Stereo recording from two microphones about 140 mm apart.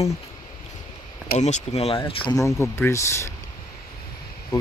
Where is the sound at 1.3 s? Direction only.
55° left (ahead or behind).